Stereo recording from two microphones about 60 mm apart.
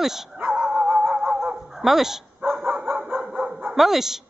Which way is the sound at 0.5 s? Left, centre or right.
Centre.